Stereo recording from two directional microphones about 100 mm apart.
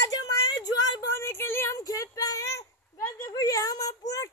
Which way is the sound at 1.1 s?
25° left (ahead or behind).